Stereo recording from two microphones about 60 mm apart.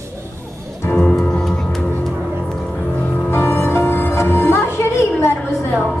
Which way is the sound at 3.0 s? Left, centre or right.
Left.